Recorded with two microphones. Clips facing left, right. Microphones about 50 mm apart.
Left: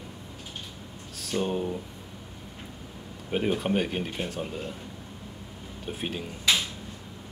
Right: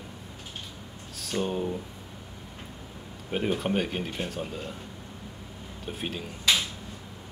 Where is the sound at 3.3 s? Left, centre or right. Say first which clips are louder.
Left 1 dB; centre.